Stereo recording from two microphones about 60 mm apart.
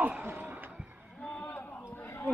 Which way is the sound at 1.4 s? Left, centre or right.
Left.